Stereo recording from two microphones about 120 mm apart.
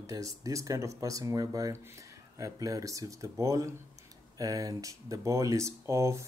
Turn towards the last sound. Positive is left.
turn(degrees=-25)  # may be behind; listen again after turning